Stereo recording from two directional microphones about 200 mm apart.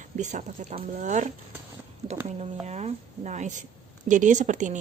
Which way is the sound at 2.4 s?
35° right (ahead or behind).